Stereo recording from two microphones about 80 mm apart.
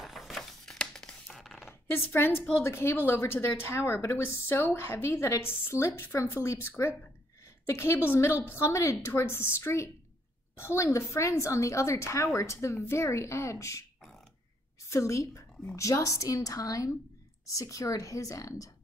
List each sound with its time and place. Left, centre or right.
0.0 s a sound: centre
1.7 s a woman's voice: left
14.9 s a woman's voice: left